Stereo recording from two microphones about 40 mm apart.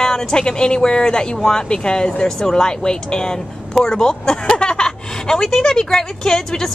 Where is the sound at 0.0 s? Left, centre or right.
Centre.